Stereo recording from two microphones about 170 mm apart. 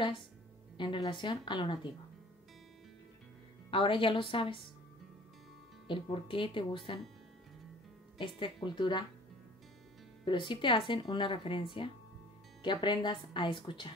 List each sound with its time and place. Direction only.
0.7 s speech: 30° left (ahead or behind)
3.7 s a woman's voice: 30° left (ahead or behind)
5.9 s speech: 30° left (ahead or behind)
8.2 s speech: 30° left (ahead or behind)
10.2 s speech: 30° left (ahead or behind)